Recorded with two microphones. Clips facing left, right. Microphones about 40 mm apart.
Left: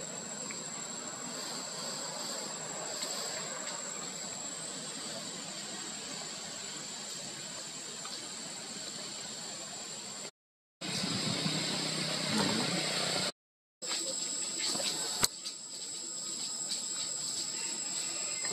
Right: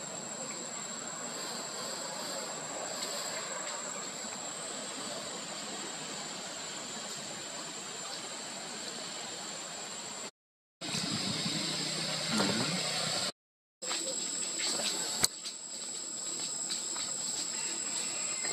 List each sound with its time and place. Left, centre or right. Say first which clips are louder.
1.2 s vehicle: right 2 dB; centre
11.0 s vehicle: left 1 dB; centre